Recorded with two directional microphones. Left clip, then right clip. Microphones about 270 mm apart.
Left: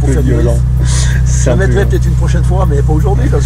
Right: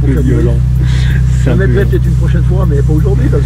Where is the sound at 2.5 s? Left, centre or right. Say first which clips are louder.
Left 1 dB; left.